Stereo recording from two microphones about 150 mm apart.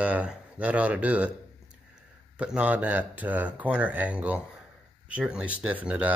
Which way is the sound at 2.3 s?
10° right (ahead or behind).